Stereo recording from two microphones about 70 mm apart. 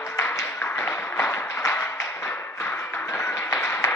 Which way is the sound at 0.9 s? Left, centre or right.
Left.